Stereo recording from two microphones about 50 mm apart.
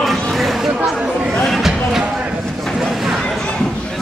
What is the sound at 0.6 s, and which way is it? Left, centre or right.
Chatter, centre.